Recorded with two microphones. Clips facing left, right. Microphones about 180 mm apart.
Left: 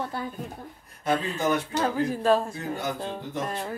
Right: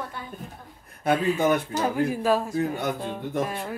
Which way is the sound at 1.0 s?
55° right (ahead or behind).